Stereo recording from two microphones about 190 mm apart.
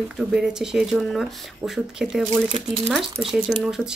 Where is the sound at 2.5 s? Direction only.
30° right (ahead or behind).